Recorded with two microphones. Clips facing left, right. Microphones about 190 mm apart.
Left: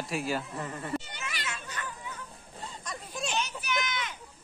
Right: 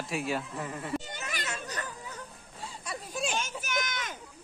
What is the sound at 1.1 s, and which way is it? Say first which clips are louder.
Children playing: right 2 dB; 45° right (ahead or behind).